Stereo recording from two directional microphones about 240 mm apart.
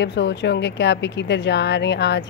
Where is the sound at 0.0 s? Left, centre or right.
Left.